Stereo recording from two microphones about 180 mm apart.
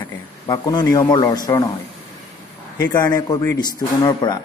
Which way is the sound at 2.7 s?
20° left (ahead or behind).